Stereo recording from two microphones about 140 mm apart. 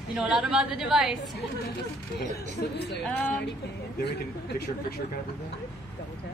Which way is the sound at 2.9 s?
10° left (ahead or behind).